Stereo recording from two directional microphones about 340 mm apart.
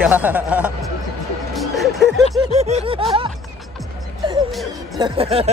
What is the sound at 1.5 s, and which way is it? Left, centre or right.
Music, centre.